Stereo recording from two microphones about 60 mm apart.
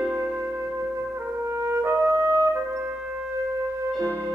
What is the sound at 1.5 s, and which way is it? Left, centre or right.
Music, right.